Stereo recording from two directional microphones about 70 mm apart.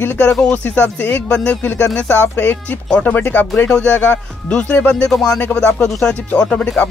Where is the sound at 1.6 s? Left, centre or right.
Left.